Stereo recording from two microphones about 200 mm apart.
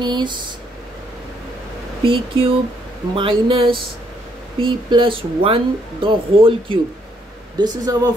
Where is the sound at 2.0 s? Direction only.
25° right (ahead or behind).